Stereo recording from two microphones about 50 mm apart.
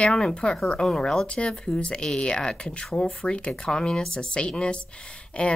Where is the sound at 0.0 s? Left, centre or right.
Centre.